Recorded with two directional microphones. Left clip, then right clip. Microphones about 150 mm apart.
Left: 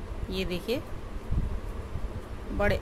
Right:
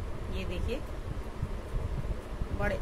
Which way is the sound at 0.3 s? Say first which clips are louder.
Left 7 dB; 65° left (ahead or behind).